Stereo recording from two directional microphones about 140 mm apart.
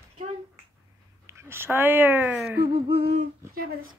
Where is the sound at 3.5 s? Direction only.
90° right.